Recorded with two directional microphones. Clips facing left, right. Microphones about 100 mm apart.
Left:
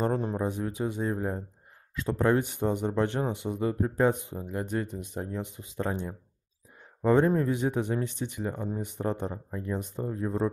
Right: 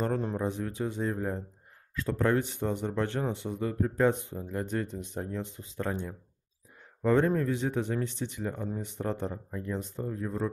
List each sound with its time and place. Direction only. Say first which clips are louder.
0.0 s speech: left 2 dB; 20° left (ahead or behind)
10.0 s speech: left 4 dB; 25° left (ahead or behind)